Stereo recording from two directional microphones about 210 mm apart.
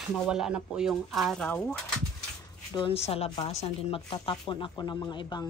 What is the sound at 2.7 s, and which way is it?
A woman's voice, 25° left (ahead or behind).